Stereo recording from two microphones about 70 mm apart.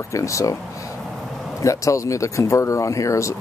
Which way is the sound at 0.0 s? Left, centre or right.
Left.